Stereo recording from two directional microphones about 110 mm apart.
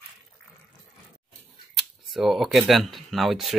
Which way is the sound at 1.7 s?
Centre (ahead or behind).